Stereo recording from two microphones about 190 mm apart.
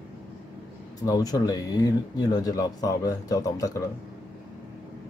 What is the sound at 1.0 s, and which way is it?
Speech, 20° left (ahead or behind).